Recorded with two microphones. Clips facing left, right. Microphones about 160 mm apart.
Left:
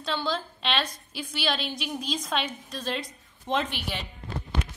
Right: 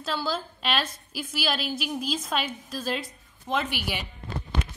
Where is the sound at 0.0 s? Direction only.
5° right (ahead or behind).